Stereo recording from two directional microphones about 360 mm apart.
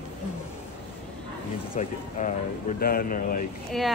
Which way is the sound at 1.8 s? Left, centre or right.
Centre.